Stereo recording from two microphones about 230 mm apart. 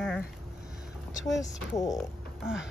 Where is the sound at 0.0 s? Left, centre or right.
Centre.